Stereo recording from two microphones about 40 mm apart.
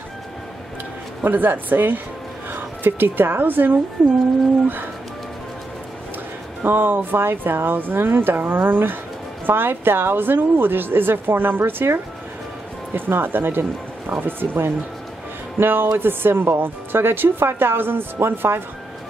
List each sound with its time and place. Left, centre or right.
1.2 s a woman's voice: right
6.6 s a woman's voice: right
12.9 s a woman's voice: right